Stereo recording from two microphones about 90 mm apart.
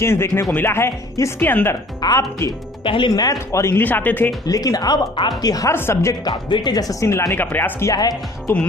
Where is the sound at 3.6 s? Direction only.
25° left (ahead or behind).